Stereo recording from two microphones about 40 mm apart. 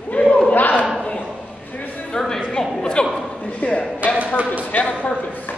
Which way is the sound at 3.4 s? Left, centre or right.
Left.